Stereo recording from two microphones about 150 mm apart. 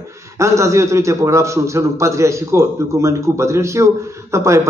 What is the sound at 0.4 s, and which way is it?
A man's voice, 20° right (ahead or behind).